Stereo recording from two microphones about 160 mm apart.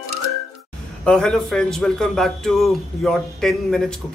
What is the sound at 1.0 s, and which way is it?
Speech, 5° left (ahead or behind).